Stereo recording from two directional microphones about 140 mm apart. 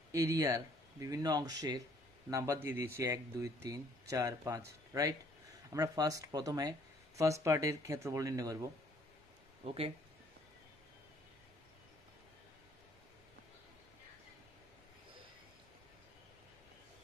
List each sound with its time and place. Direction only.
0.1 s speech: 20° right (ahead or behind)
9.7 s speech: 45° right (ahead or behind)